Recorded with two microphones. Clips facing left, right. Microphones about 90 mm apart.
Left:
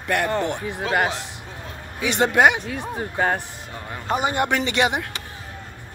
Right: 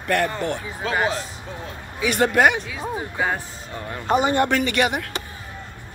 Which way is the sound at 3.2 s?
55° left (ahead or behind).